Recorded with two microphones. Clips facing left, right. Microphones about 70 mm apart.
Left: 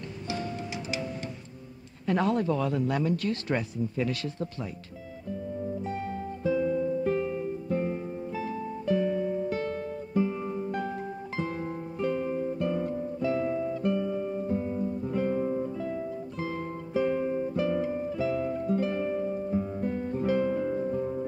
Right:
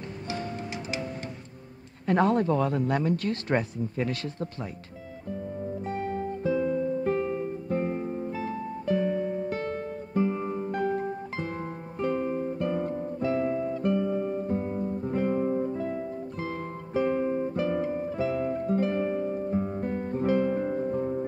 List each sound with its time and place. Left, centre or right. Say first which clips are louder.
2.0 s speech: right 3 dB; right
5.9 s guitar: right 3 dB; right
16.9 s guitar: right 1 dB; right